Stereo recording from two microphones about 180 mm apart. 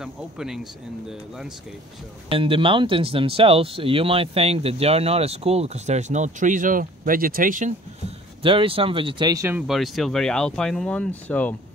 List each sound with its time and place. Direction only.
0.0 s speech: 5° right (ahead or behind)
2.2 s speech: 30° right (ahead or behind); by 7.7 s 50° right (ahead or behind)
8.4 s speech: 30° right (ahead or behind)
9.6 s speech: centre (ahead or behind)